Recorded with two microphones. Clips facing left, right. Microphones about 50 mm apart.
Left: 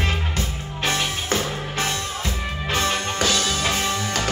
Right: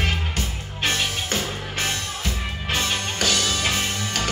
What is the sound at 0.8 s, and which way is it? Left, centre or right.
Music, left.